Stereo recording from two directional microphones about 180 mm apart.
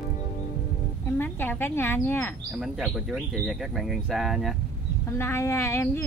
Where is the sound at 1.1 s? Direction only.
10° left (ahead or behind).